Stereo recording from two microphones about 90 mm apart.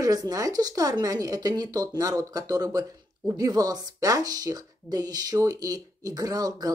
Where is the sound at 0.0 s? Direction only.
40° right (ahead or behind).